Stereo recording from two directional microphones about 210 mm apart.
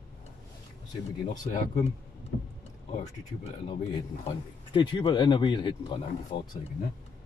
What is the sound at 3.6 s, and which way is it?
Speech, 25° left (ahead or behind).